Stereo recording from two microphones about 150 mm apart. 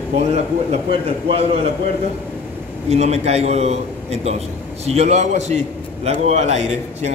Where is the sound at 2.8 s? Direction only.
45° right (ahead or behind).